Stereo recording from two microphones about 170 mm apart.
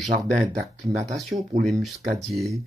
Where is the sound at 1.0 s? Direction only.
Centre (ahead or behind).